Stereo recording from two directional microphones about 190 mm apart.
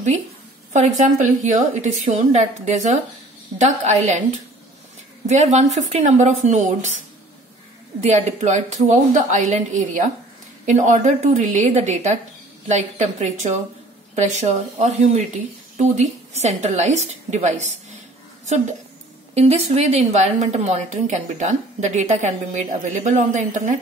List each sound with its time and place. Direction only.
0.7 s a woman's voice: 40° right (ahead or behind)
5.3 s a woman's voice: 35° right (ahead or behind)
8.0 s a woman's voice: 35° right (ahead or behind)
19.3 s a woman's voice: 35° right (ahead or behind)